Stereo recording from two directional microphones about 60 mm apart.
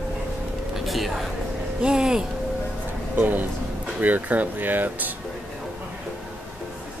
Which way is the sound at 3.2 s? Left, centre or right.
Right.